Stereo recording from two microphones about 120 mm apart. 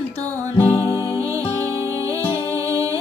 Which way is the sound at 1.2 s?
25° right (ahead or behind).